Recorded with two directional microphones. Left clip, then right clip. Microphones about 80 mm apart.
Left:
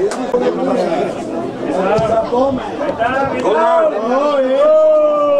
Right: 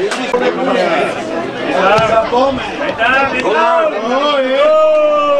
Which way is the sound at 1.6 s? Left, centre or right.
Right.